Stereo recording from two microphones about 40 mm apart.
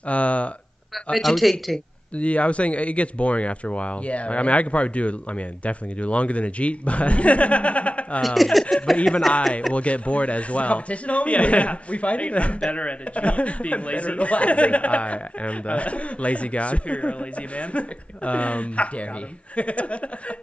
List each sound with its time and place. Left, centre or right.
0.0 s speech: left
1.1 s speech: centre
2.1 s speech: left
8.4 s speech: centre
9.8 s speech: left